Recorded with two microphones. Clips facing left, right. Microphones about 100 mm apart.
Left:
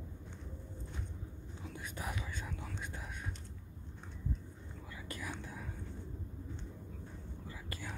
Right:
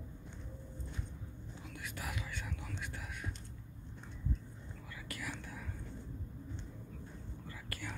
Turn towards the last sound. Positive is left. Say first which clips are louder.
# even
turn(degrees=15)  # may be behind; listen again after turning